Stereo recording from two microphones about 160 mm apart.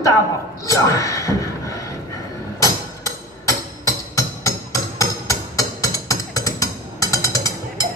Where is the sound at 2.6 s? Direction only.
20° left (ahead or behind).